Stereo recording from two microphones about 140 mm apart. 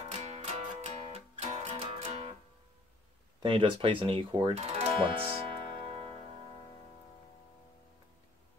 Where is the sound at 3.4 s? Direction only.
40° right (ahead or behind).